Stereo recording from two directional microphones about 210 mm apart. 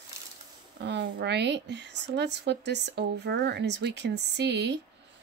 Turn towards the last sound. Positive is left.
turn(degrees=-55)  # may be behind; listen again after turning